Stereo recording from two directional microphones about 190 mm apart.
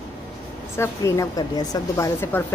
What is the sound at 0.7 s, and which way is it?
A woman's voice, 15° left (ahead or behind).